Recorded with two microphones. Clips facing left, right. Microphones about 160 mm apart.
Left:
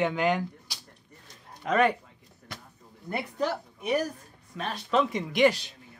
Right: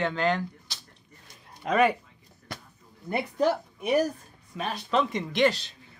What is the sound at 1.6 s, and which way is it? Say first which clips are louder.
Speech: right 1 dB; 5° right (ahead or behind).